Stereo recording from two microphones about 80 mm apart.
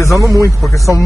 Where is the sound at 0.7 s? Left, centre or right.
Left.